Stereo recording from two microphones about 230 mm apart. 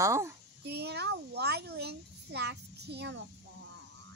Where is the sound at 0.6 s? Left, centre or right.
Right.